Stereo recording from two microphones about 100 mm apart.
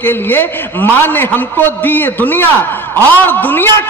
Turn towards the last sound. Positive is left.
turn(degrees=20)  # may be behind; listen again after turning